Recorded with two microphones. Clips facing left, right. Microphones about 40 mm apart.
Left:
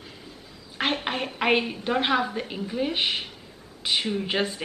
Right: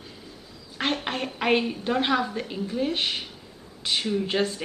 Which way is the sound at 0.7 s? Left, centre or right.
Centre.